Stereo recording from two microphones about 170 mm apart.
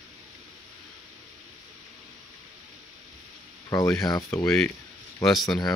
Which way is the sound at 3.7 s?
20° left (ahead or behind).